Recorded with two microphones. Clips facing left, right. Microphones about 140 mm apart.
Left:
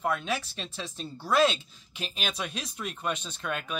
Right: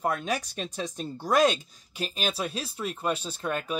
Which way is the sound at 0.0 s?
40° right (ahead or behind).